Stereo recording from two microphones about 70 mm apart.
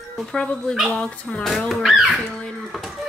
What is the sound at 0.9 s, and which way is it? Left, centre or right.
Speech, centre.